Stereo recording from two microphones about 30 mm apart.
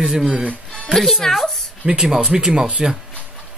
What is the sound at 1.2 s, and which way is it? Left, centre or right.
Speech, centre.